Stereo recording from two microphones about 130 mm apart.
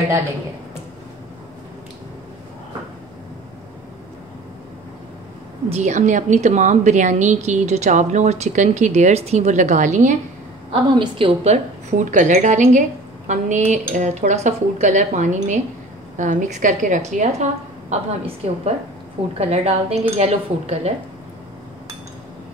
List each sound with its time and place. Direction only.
5.7 s a woman's voice: 65° right (ahead or behind)
10.7 s a woman's voice: 45° right (ahead or behind)
11.5 s a woman's voice: 75° right (ahead or behind)
19.3 s a woman's voice: 55° right (ahead or behind)